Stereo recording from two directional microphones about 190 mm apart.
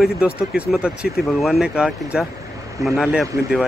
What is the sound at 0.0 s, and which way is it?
Speech, 5° right (ahead or behind).